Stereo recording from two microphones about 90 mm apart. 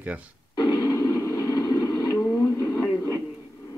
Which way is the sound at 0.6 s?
50° left (ahead or behind).